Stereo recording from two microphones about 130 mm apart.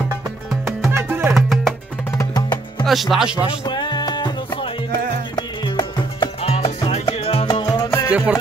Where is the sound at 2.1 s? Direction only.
30° left (ahead or behind).